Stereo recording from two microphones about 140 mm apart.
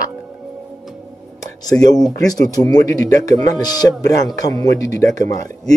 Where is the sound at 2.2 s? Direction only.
25° left (ahead or behind).